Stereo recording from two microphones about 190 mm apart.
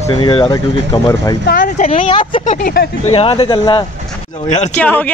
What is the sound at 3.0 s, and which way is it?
Speech, 30° left (ahead or behind).